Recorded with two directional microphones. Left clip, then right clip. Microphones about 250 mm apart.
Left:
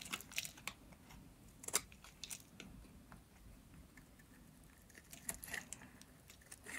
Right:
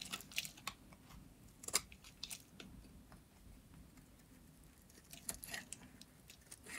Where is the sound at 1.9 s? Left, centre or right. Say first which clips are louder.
Right 1 dB; centre.